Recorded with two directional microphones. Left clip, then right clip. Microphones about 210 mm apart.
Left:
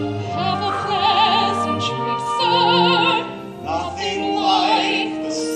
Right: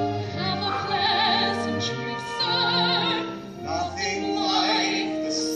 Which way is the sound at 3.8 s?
20° right (ahead or behind).